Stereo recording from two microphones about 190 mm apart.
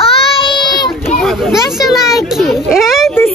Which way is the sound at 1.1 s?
Centre (ahead or behind).